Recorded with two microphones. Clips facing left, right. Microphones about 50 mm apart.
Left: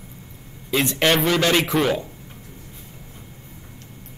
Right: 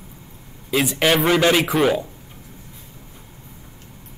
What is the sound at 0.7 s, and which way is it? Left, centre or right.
A man's voice, centre.